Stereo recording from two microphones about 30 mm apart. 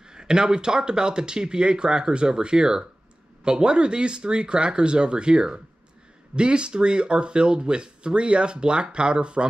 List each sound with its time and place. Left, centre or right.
0.0 s speech: right